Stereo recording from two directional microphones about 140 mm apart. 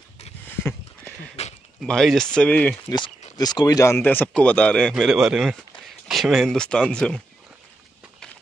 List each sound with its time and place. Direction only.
1.4 s a sound: 50° left (ahead or behind)
1.8 s speech: centre (ahead or behind)
3.3 s speech: 30° left (ahead or behind)
4.0 s speech: 10° left (ahead or behind)